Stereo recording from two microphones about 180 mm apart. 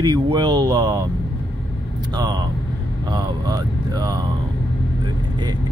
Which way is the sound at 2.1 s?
20° right (ahead or behind).